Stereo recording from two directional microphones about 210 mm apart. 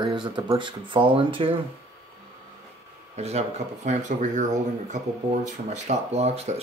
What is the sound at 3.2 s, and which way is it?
Speech, 30° right (ahead or behind).